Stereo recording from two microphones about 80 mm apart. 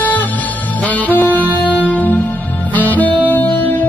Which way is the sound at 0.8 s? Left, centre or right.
Centre.